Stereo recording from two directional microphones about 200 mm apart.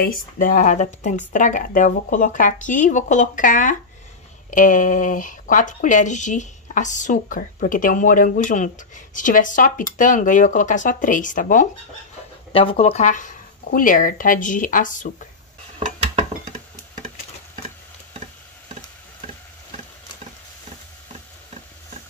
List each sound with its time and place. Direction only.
0.0 s speech: 45° left (ahead or behind)
12.5 s speech: 30° left (ahead or behind)